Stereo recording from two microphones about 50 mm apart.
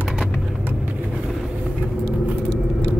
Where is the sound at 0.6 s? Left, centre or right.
Right.